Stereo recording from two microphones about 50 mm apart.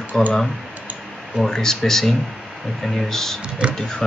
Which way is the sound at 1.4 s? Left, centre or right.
Centre.